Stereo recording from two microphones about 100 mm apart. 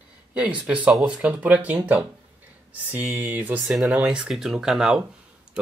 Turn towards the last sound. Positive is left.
turn(degrees=0)  # may be behind; listen again after turning